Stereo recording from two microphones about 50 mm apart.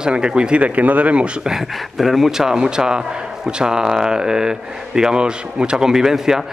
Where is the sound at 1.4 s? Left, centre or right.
Centre.